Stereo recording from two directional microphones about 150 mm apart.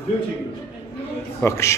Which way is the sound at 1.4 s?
20° left (ahead or behind).